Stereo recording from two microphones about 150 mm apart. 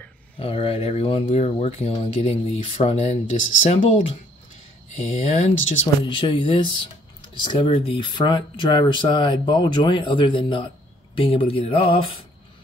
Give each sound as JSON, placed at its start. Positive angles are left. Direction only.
{"t": 0.4, "sound": "speech", "side_deg": 40}
{"t": 4.9, "sound": "speech", "side_deg": 45}
{"t": 6.0, "sound": "speech", "side_deg": 35}